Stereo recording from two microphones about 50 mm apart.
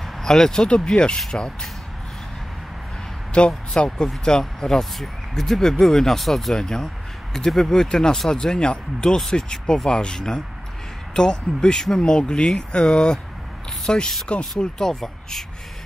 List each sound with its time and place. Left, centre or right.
0.2 s speech: centre
3.3 s speech: centre